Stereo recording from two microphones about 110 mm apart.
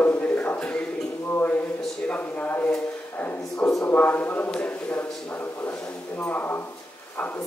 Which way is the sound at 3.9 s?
15° left (ahead or behind).